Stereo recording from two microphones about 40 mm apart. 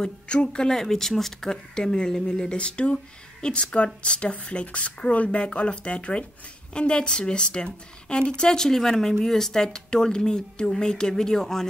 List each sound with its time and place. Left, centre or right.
0.0 s speech: left
0.7 s a woman's voice: centre